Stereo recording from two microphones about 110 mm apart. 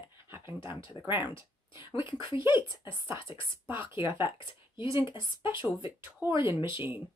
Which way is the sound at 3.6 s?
20° right (ahead or behind).